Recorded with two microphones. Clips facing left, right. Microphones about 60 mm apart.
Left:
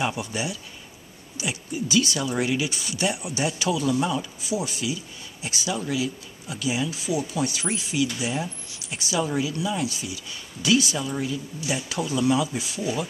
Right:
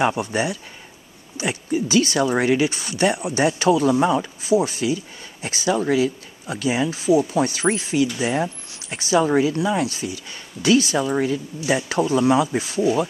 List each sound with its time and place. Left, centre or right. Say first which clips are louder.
0.1 s speech: right 7 dB; right